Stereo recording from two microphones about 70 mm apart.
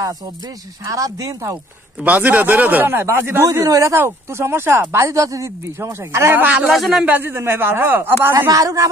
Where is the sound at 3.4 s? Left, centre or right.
Right.